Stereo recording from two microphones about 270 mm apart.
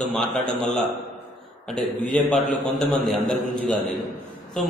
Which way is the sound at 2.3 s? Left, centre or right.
Centre.